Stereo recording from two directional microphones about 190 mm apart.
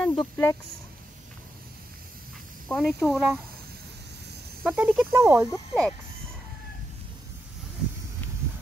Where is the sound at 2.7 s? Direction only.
Centre (ahead or behind).